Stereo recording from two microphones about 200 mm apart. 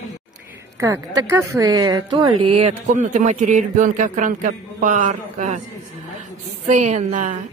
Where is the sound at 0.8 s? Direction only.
15° right (ahead or behind); by 5.6 s 35° right (ahead or behind).